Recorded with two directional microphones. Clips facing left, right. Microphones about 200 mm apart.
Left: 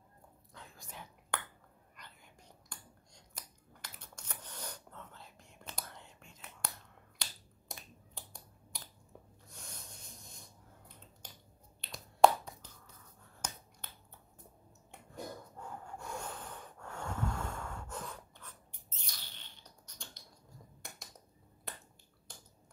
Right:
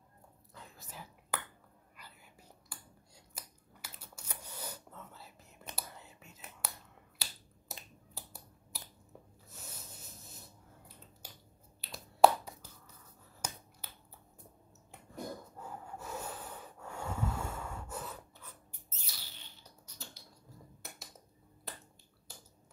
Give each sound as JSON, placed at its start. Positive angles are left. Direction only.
{"t": 0.5, "sound": "whispering", "side_deg": -5}
{"t": 3.3, "sound": "a sound", "side_deg": -5}
{"t": 5.8, "sound": "whispering", "side_deg": -5}
{"t": 6.6, "sound": "finger snapping", "side_deg": -5}
{"t": 9.5, "sound": "a sound", "side_deg": -5}
{"t": 11.2, "sound": "finger snapping", "side_deg": -5}
{"t": 15.6, "sound": "snort", "side_deg": -5}
{"t": 20.8, "sound": "dishes", "side_deg": -5}
{"t": 21.7, "sound": "finger snapping", "side_deg": 0}